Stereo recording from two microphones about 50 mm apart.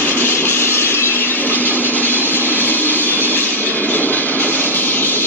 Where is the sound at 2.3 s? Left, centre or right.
Left.